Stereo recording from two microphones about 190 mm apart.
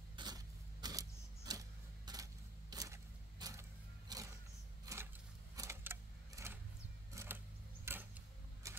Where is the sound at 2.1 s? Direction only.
20° right (ahead or behind).